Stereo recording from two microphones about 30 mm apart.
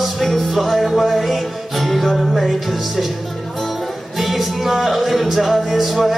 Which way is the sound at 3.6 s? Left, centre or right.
Centre.